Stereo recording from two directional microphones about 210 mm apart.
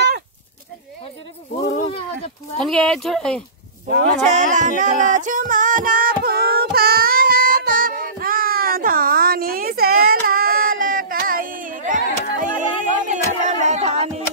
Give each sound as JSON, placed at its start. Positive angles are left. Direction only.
{"t": 1.8, "sound": "a sound", "side_deg": 30}
{"t": 2.6, "sound": "speech", "side_deg": 5}
{"t": 4.2, "sound": "music", "side_deg": -35}